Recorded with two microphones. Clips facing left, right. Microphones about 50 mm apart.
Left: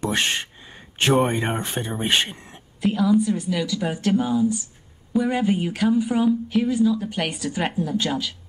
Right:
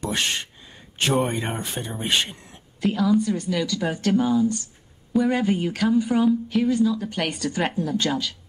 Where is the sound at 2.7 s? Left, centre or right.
Centre.